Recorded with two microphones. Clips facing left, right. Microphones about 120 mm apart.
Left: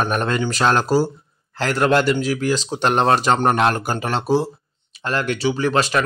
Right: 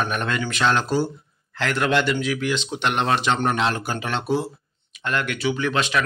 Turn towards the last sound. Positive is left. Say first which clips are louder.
# left 4 dB
turn(degrees=35)  # may be behind; listen again after turning